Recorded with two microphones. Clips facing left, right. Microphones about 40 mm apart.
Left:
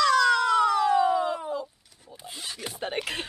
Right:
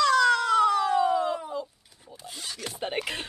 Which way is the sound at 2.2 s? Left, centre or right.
Centre.